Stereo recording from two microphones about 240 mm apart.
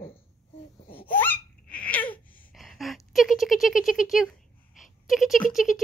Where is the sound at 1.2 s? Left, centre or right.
Centre.